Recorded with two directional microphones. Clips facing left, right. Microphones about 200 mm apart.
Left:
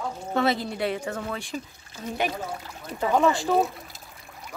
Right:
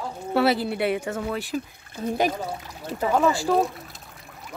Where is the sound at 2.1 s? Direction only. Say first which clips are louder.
Right 5 dB; 40° right (ahead or behind).